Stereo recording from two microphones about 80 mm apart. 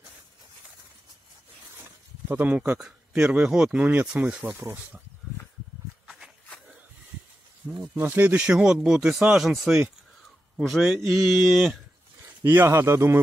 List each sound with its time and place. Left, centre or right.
2.2 s speech: right
4.6 s speech: right
6.0 s walk: centre
7.9 s speech: right
10.6 s a man's voice: centre
11.3 s speech: centre
12.4 s speech: right